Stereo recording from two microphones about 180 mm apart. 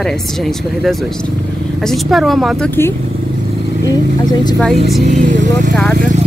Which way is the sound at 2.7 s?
15° left (ahead or behind).